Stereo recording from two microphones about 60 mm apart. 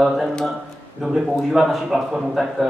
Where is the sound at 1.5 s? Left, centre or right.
Centre.